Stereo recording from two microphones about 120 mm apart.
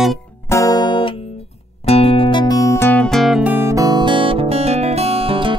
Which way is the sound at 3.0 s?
Centre (ahead or behind).